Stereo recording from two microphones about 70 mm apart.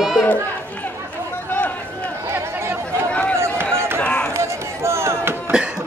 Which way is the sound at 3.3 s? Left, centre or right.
Right.